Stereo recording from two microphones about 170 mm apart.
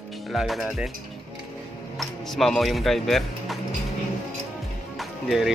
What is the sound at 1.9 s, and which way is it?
Music, centre (ahead or behind).